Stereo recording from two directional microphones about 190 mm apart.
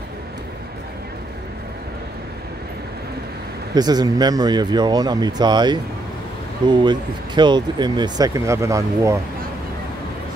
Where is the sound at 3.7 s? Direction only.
20° right (ahead or behind).